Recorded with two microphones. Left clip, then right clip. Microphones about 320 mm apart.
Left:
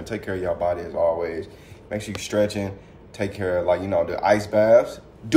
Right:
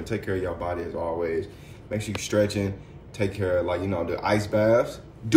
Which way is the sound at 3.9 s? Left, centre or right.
Left.